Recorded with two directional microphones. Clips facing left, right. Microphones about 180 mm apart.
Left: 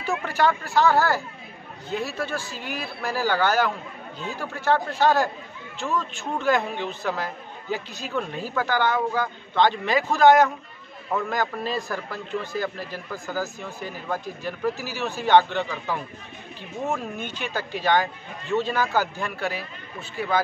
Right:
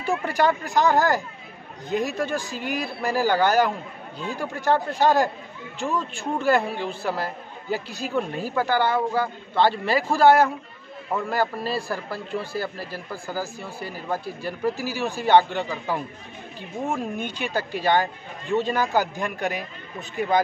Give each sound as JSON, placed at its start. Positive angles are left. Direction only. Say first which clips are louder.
{"t": 0.2, "sound": "a man's voice", "louder": "right 1 dB", "side_deg": -15}
{"t": 17.2, "sound": "a man's voice", "louder": "right 3 dB", "side_deg": -10}